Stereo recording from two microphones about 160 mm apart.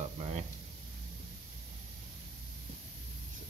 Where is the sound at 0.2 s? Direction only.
45° right (ahead or behind).